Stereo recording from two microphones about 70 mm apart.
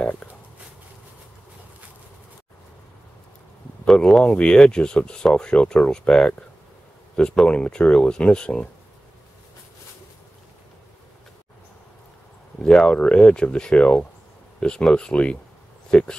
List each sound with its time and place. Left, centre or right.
0.0 s speech: centre
3.8 s speech: centre
12.5 s speech: centre